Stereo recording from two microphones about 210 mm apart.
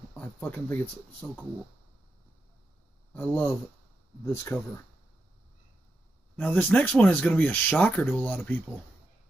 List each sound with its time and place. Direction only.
0.1 s speech: 10° left (ahead or behind)
3.2 s speech: 10° left (ahead or behind)
6.3 s speech: 10° left (ahead or behind)